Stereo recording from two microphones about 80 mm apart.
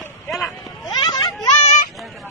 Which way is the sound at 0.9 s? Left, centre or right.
Left.